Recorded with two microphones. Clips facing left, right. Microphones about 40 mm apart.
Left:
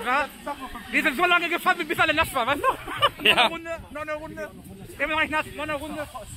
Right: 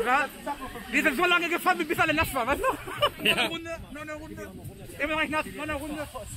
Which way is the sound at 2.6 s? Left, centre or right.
Left.